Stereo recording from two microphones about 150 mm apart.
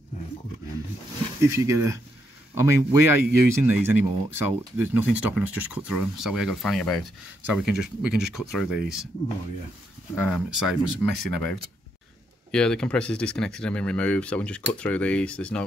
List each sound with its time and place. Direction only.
1.5 s speech: 20° right (ahead or behind); by 9.0 s 5° right (ahead or behind)
10.2 s speech: 5° right (ahead or behind)
12.4 s speech: 5° left (ahead or behind)